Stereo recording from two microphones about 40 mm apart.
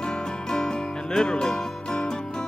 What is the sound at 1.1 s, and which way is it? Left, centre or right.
Music, centre.